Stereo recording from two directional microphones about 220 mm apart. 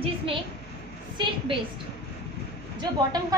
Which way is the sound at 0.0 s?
25° right (ahead or behind).